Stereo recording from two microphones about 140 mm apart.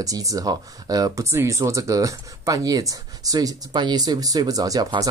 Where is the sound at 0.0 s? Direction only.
25° right (ahead or behind).